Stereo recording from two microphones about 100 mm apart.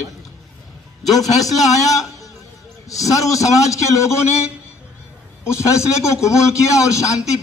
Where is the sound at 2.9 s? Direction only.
35° left (ahead or behind).